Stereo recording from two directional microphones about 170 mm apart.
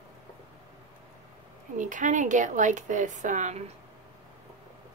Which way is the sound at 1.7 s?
50° right (ahead or behind).